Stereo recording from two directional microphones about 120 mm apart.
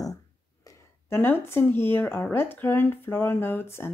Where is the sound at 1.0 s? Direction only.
20° left (ahead or behind).